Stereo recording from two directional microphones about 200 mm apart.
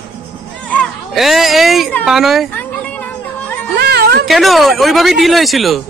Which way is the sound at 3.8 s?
55° right (ahead or behind).